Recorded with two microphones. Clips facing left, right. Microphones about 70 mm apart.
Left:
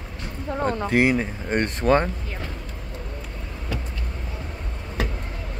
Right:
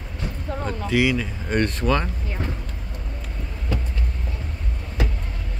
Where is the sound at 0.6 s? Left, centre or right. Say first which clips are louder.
Left 2 dB; left.